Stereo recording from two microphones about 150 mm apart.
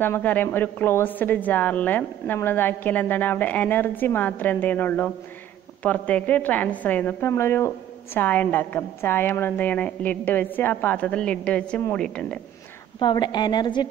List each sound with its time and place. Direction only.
0.0 s a woman's voice: 10° left (ahead or behind)
13.0 s a woman's voice: 30° left (ahead or behind)